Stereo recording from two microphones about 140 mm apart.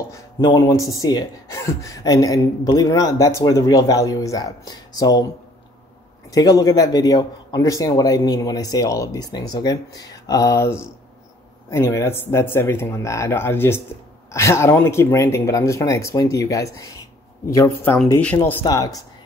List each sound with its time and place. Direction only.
0.1 s speech: 25° left (ahead or behind)
6.3 s speech: 25° left (ahead or behind)
18.6 s speech: 30° left (ahead or behind)